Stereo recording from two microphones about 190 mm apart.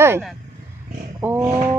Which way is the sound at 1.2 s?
10° right (ahead or behind).